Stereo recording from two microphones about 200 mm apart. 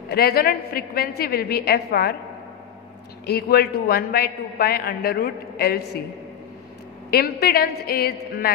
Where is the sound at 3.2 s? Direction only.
55° left (ahead or behind).